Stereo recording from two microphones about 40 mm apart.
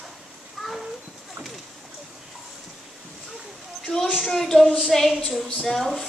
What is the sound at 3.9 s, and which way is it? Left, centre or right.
A woman's voice, centre.